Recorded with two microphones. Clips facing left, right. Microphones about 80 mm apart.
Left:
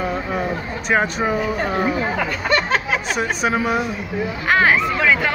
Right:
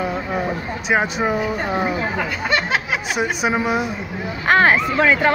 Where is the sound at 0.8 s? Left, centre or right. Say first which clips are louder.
Even; centre.